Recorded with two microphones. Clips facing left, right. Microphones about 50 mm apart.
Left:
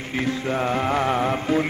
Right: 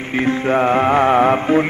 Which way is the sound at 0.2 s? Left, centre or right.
Right.